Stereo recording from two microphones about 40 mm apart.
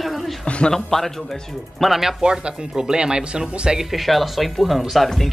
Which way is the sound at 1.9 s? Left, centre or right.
Centre.